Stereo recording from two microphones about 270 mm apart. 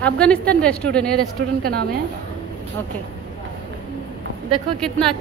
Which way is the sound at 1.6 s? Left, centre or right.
Right.